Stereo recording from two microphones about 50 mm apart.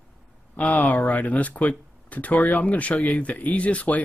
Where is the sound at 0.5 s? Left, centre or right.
Left.